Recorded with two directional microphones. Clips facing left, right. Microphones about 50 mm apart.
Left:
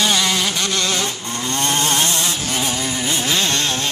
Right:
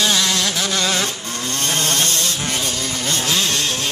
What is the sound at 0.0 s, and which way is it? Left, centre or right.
Vehicle, centre.